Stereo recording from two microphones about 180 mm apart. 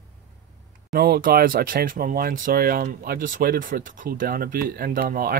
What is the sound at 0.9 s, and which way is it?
Speech, 60° right (ahead or behind).